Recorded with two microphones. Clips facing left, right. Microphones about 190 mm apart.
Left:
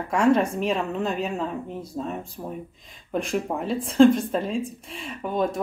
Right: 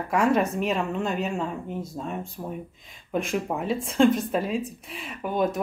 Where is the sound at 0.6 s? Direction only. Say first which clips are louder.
Left 1 dB; centre (ahead or behind).